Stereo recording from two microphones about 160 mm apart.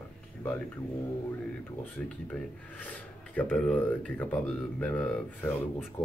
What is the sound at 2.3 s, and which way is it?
Speech, 10° left (ahead or behind).